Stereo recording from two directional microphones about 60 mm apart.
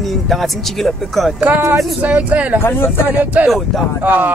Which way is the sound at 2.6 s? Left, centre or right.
Left.